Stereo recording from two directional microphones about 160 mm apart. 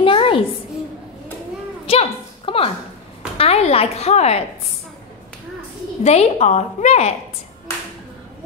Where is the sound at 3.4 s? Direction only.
40° left (ahead or behind).